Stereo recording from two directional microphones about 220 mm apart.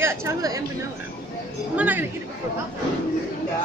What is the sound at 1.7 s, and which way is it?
Speech, 5° right (ahead or behind).